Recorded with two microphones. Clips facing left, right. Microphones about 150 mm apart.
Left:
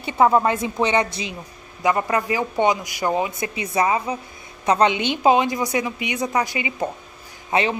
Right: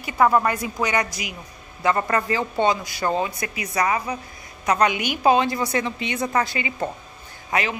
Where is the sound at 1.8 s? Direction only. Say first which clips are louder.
Left 1 dB; 15° left (ahead or behind).